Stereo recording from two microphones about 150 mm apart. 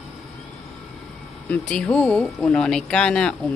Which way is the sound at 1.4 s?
10° left (ahead or behind).